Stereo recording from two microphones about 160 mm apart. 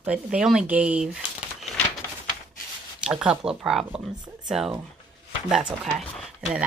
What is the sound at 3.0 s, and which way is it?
Speech, 5° right (ahead or behind).